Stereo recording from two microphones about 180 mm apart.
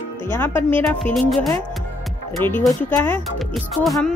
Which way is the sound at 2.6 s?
10° left (ahead or behind).